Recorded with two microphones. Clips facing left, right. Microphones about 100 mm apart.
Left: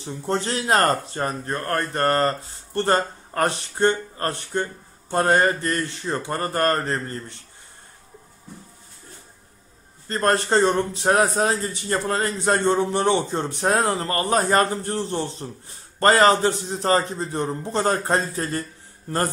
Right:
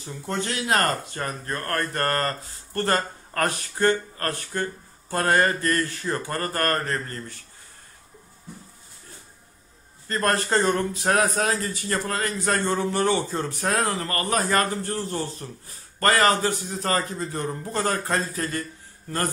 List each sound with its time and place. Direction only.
0.0 s a man's voice: 30° left (ahead or behind)
10.0 s a man's voice: 25° left (ahead or behind)